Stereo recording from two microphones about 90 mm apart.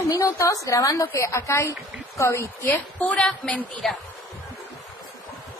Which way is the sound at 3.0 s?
10° left (ahead or behind).